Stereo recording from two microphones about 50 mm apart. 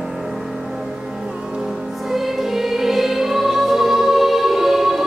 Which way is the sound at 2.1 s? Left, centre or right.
Centre.